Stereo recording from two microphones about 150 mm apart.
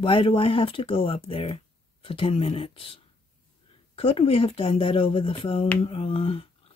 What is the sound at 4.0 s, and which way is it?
Speech, 40° left (ahead or behind).